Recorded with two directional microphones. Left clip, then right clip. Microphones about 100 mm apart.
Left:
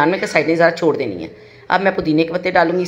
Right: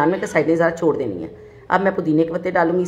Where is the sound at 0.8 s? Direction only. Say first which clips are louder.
Left 2 dB; 15° left (ahead or behind).